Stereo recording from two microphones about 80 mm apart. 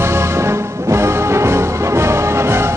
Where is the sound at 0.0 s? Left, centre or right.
Right.